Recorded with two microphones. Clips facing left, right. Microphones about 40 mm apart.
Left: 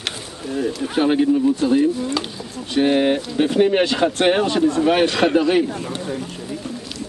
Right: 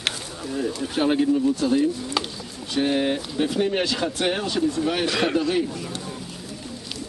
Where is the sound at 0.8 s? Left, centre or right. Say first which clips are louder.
Left 4 dB; centre; by 4.6 s left.